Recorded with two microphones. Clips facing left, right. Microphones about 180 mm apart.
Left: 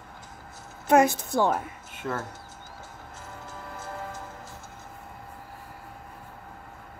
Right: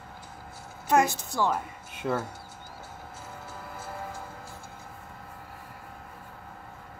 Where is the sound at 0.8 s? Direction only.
55° left (ahead or behind).